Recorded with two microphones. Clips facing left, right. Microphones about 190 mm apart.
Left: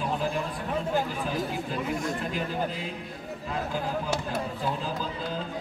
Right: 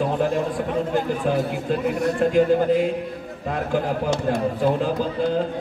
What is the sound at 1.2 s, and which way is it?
A man's voice, 65° right (ahead or behind).